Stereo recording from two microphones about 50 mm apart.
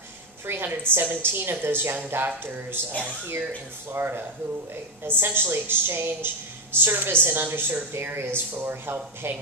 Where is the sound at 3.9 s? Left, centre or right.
Right.